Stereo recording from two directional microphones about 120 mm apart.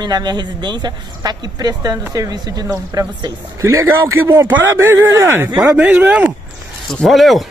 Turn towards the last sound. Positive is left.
turn(degrees=0)  # may be behind; listen again after turning